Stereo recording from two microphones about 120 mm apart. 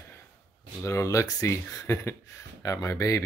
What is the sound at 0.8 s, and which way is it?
Speech, 25° left (ahead or behind).